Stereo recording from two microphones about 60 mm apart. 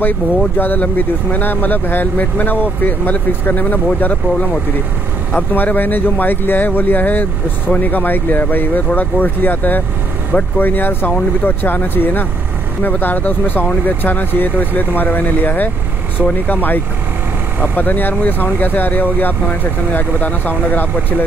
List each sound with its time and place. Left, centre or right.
0.6 s speech: left